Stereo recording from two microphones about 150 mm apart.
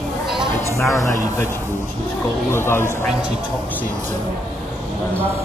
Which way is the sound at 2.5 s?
15° left (ahead or behind).